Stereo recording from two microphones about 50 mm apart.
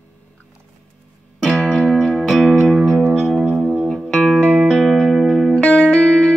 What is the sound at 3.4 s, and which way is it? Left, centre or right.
Music, centre.